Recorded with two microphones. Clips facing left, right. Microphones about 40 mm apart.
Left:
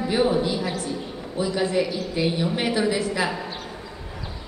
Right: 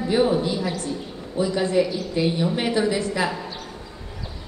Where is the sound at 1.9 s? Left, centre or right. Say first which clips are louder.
Right 1 dB; left.